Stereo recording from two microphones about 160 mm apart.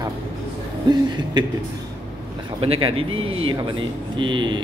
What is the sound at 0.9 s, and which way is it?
Speech, 25° right (ahead or behind).